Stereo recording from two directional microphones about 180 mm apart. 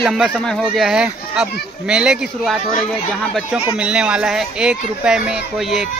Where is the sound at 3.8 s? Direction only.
5° right (ahead or behind).